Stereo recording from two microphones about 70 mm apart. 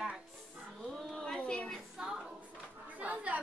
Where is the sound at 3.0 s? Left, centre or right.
Right.